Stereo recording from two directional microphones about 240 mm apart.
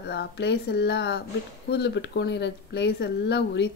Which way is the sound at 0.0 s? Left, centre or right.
Left.